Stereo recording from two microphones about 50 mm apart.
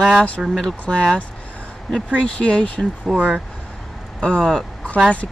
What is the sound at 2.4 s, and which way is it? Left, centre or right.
Speech, left.